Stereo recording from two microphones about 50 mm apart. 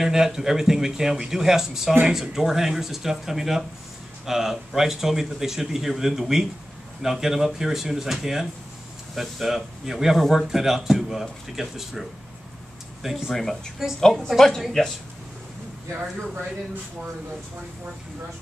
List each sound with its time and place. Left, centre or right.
0.0 s speech: centre
13.3 s a woman's voice: centre